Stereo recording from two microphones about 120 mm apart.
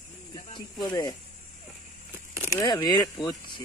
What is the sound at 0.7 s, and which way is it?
Speech, 35° left (ahead or behind).